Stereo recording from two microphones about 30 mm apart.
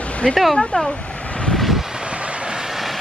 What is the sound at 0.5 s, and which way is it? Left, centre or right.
Speech, centre.